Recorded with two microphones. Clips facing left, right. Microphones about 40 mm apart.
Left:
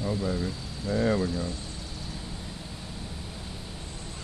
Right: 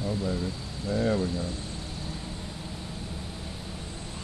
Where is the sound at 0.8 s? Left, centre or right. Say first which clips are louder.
Left 1 dB; left.